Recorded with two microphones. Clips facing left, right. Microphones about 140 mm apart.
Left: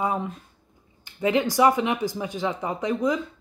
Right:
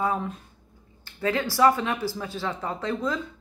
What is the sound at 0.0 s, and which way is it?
Speech, 15° left (ahead or behind).